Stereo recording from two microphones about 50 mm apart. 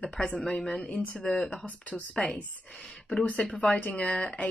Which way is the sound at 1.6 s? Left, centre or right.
Left.